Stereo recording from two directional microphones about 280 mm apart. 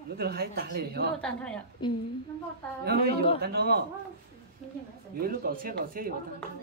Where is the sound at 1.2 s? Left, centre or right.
Centre.